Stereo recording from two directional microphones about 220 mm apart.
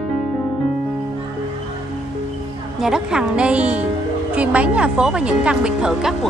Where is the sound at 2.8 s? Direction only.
5° right (ahead or behind).